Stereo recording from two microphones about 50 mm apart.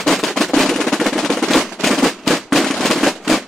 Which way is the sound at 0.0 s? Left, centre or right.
Centre.